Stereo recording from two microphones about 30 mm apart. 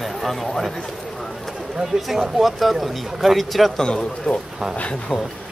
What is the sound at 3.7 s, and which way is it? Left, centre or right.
Speech, left.